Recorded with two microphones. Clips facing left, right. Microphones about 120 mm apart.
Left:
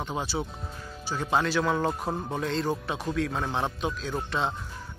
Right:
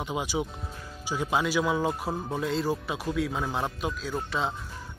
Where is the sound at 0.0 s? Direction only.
10° right (ahead or behind).